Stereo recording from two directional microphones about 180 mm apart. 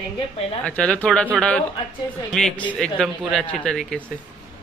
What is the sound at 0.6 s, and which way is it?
Speech, 5° left (ahead or behind).